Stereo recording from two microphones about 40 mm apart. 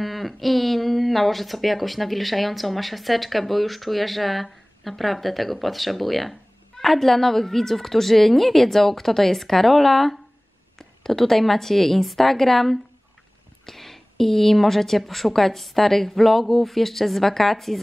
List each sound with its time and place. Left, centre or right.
0.0 s speech: centre